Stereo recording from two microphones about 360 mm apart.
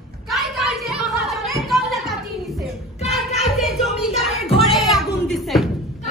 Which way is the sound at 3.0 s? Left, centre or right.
Centre.